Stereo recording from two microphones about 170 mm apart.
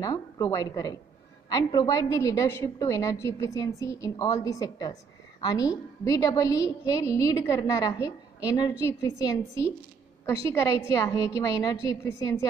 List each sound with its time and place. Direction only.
0.0 s a woman's voice: 20° left (ahead or behind)